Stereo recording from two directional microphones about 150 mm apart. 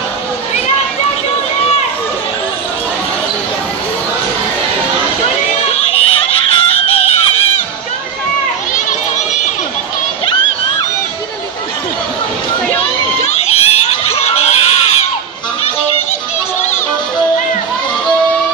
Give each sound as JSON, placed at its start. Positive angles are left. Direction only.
{"t": 5.7, "sound": "music", "side_deg": 40}
{"t": 8.7, "sound": "children playing", "side_deg": 55}
{"t": 13.2, "sound": "children shouting", "side_deg": 40}